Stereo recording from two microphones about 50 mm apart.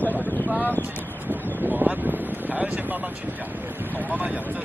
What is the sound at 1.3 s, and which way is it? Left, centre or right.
Wind noise, right.